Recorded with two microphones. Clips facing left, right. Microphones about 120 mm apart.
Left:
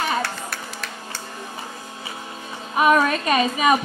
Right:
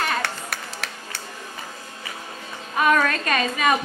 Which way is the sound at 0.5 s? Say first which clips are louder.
Left 1 dB; 85° right.